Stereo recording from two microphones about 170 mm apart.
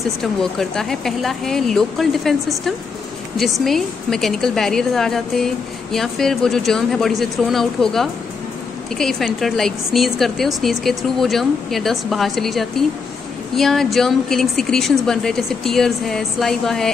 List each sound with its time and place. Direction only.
0.2 s a woman's voice: centre (ahead or behind)